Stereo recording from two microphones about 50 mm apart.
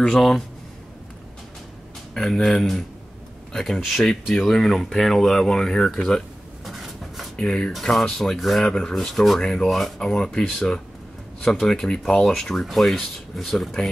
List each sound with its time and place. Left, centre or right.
0.1 s speech: centre
2.1 s speech: centre
3.8 s speech: centre
6.6 s a sound: centre
7.3 s speech: centre
7.8 s speech: centre
8.6 s speech: centre
8.9 s speech: centre
9.4 s speech: centre
9.7 s speech: centre
9.9 s speech: centre